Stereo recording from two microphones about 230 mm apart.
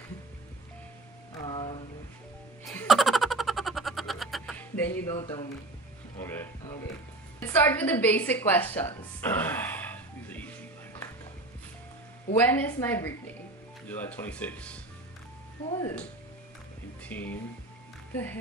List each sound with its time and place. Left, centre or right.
1.4 s music: left
2.6 s music: centre
4.9 s a woman's voice: centre
12.4 s speech: centre
17.0 s speech: centre